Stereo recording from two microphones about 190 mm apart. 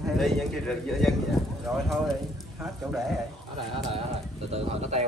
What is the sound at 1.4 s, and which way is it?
Clip-clop, centre (ahead or behind).